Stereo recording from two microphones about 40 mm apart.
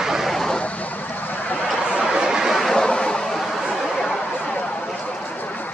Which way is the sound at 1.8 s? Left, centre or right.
Right.